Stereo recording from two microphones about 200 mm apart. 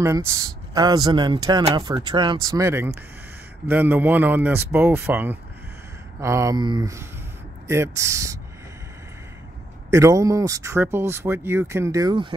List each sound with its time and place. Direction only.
0.0 s speech: 15° right (ahead or behind)
9.8 s speech: 15° right (ahead or behind)